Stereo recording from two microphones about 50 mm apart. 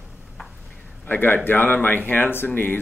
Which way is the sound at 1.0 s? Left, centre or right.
Left.